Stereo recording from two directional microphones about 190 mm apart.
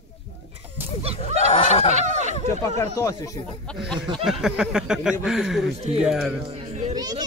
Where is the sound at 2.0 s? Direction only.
35° right (ahead or behind).